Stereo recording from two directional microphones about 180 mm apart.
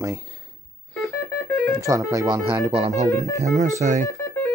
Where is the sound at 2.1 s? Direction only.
20° right (ahead or behind).